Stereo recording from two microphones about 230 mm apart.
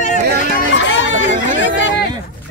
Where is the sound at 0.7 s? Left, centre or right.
Left.